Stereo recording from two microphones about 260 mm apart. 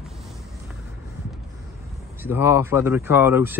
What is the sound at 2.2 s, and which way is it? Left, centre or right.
Speech, centre.